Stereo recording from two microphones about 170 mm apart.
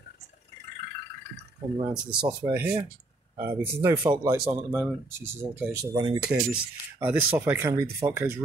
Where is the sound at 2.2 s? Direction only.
25° right (ahead or behind).